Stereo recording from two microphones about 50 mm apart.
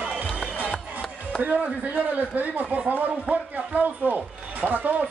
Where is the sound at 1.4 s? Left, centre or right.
Right.